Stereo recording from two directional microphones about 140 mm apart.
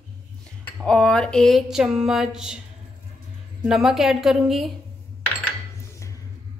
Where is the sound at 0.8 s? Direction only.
5° left (ahead or behind).